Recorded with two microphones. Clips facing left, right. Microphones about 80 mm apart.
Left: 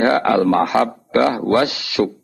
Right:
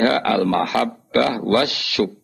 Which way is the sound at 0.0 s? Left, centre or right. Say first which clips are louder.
Left 3 dB; centre.